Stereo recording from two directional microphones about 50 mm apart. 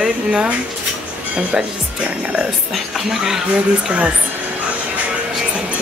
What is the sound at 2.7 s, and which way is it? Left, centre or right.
Speech, centre.